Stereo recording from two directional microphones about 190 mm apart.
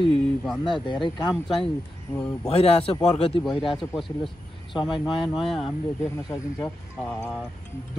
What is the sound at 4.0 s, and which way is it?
Speech, centre (ahead or behind).